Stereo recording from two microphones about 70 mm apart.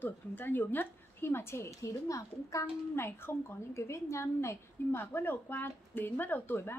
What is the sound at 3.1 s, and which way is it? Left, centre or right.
A woman's voice, left.